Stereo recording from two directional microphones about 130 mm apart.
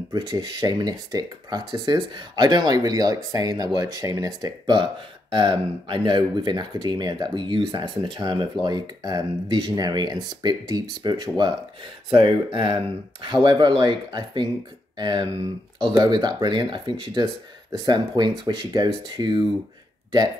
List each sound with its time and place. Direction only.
0.1 s speech: 30° right (ahead or behind)